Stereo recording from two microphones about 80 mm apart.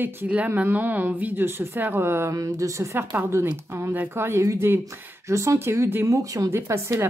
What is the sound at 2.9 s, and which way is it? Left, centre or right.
A woman's voice, right.